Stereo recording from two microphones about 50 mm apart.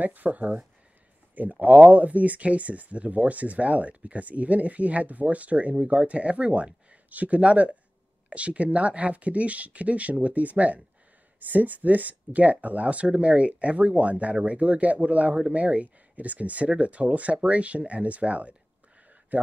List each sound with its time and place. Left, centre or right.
0.0 s speech: right